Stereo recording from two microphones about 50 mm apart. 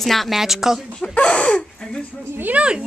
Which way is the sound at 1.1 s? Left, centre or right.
Left.